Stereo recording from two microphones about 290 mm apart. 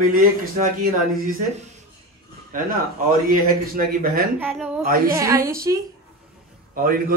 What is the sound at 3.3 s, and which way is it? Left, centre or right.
Speech, right.